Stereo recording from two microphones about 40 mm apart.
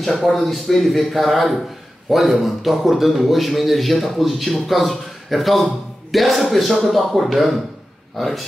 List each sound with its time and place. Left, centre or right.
0.0 s a man's voice: centre